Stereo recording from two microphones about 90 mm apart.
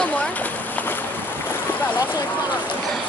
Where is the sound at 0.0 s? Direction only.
15° left (ahead or behind).